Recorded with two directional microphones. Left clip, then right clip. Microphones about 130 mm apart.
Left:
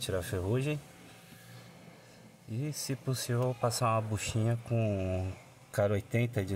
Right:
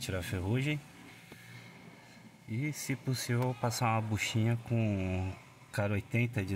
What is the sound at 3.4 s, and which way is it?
Speech, centre (ahead or behind).